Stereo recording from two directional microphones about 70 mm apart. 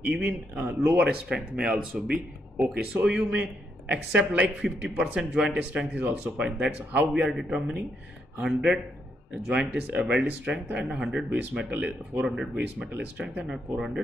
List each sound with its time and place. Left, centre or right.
0.2 s speech: centre
0.7 s speech: right; by 11.6 s centre
11.7 s speech: right
13.5 s speech: centre